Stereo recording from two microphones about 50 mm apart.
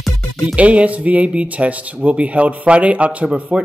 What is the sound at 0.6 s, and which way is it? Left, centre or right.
Speech, right.